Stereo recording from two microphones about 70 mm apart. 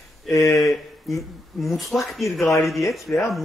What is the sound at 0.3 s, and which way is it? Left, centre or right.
Speech, left.